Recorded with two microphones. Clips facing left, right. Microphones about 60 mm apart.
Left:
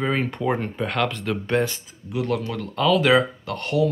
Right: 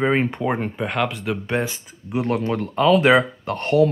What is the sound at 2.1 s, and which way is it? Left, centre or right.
Speech, right.